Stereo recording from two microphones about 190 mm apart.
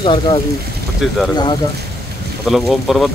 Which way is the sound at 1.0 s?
Centre (ahead or behind).